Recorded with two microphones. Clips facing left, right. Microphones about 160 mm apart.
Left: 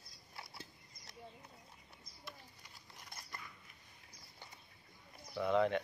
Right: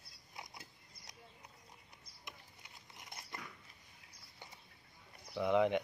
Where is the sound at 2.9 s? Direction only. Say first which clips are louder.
Right 2 dB; 20° right (ahead or behind).